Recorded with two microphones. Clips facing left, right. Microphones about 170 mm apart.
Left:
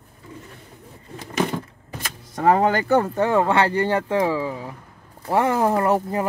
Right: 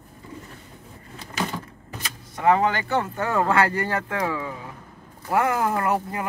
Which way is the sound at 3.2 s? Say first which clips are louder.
Left 3 dB; 25° left (ahead or behind).